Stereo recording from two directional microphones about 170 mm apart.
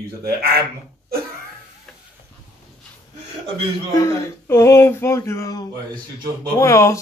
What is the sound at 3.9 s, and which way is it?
Speech, 20° left (ahead or behind).